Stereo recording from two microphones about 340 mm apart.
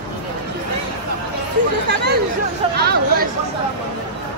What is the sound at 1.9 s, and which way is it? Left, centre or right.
Chatter, right.